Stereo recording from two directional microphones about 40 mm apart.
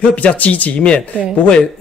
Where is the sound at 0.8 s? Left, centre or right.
Left.